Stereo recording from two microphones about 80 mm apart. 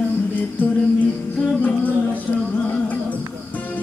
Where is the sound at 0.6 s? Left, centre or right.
Left.